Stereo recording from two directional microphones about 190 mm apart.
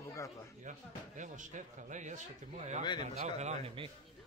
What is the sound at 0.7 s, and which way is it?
Speech, 40° right (ahead or behind).